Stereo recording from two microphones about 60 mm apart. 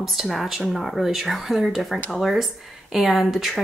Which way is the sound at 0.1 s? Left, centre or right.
Centre.